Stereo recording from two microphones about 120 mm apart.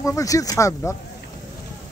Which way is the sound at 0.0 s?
25° left (ahead or behind).